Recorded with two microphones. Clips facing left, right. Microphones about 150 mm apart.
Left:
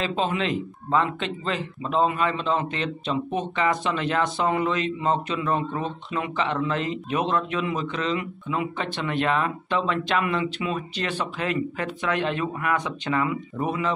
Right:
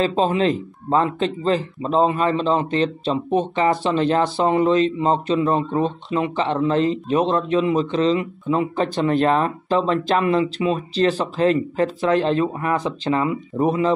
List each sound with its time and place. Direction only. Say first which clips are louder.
0.0 s speech: right 7 dB; 35° right (ahead or behind)